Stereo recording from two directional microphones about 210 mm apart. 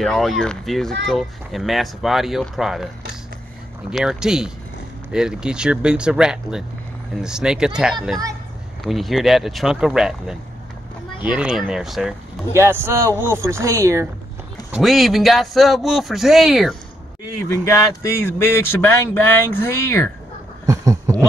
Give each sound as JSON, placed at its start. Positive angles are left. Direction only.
{"t": 0.0, "sound": "speech", "side_deg": 0}
{"t": 3.9, "sound": "speech", "side_deg": 0}
{"t": 12.5, "sound": "speech", "side_deg": -10}
{"t": 14.7, "sound": "speech", "side_deg": 0}
{"t": 17.5, "sound": "speech", "side_deg": 15}
{"t": 20.6, "sound": "a sound", "side_deg": -15}